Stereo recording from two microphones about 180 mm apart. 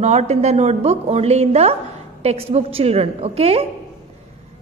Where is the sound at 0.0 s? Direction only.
35° right (ahead or behind).